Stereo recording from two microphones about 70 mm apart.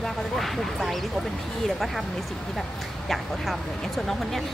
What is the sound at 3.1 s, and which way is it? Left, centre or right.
Speech, centre.